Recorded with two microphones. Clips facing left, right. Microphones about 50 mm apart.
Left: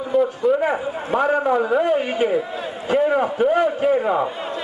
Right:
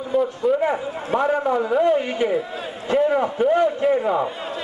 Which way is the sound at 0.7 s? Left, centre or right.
Centre.